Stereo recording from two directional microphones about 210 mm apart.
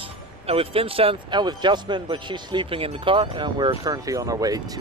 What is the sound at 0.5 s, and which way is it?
Speech, 25° right (ahead or behind).